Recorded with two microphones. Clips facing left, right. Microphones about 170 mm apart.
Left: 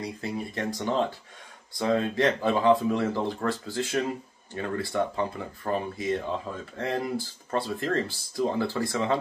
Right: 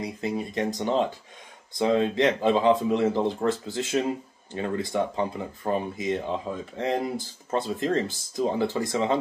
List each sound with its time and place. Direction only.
0.0 s speech: 20° right (ahead or behind)